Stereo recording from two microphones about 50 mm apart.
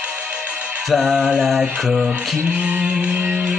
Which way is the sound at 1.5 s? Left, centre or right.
Centre.